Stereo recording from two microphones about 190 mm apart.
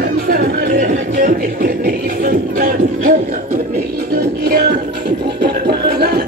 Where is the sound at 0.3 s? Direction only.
50° right (ahead or behind).